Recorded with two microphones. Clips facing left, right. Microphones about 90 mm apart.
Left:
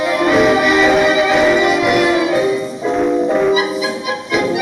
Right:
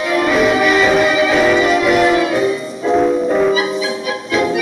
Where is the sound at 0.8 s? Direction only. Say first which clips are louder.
Left 1 dB; 15° left (ahead or behind).